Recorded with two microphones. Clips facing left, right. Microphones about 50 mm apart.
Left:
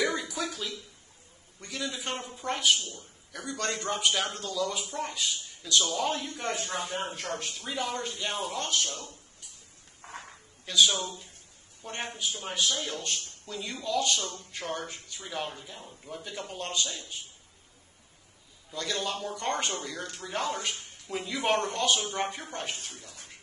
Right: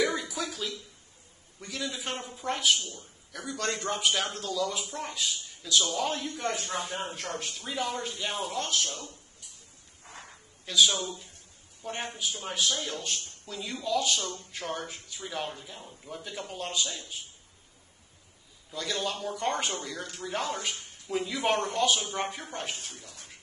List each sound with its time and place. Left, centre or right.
0.0 s throat clearing: centre
1.6 s speech: centre
10.0 s a sound: left
10.6 s speech: centre
18.7 s speech: centre